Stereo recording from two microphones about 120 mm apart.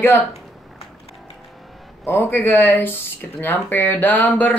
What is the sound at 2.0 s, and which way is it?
Speech, 20° left (ahead or behind).